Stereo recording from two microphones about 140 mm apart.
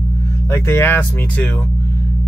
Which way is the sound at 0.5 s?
15° left (ahead or behind).